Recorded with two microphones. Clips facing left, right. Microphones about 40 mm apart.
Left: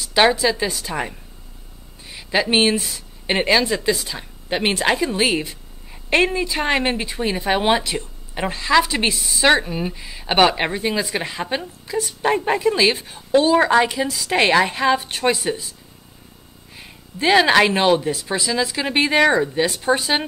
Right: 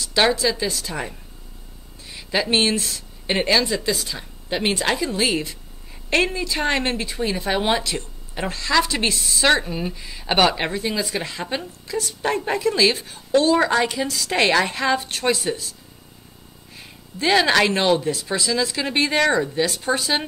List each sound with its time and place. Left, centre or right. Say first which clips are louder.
0.0 s a woman's voice: left 3 dB; centre
16.7 s a woman's voice: left 1 dB; centre